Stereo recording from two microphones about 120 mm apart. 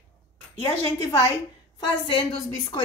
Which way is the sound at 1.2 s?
25° left (ahead or behind).